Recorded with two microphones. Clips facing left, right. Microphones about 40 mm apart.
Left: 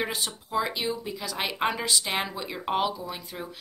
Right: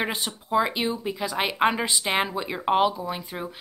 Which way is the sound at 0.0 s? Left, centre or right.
Right.